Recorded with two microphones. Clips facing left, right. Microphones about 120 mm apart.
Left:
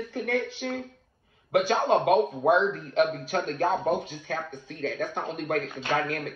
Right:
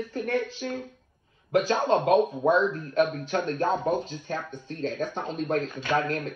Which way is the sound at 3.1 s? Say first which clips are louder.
Right 1 dB; 40° left (ahead or behind).